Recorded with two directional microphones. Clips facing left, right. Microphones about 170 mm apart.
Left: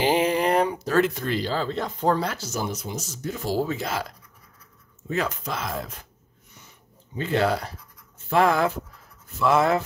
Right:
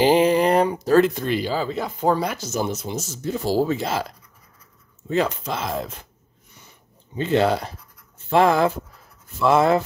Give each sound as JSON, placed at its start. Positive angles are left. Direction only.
{"t": 0.0, "sound": "a sound", "side_deg": -35}
{"t": 1.2, "sound": "speech", "side_deg": -15}
{"t": 5.1, "sound": "speech", "side_deg": -25}
{"t": 7.2, "sound": "speech", "side_deg": -25}